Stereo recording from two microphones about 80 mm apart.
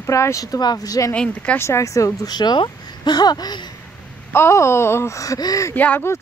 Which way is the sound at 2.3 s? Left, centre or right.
Left.